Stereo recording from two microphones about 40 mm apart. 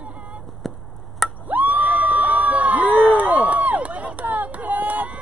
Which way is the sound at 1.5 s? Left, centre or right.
Right.